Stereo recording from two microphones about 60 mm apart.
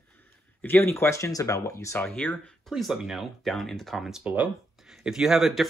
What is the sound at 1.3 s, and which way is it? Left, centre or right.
Speech, left.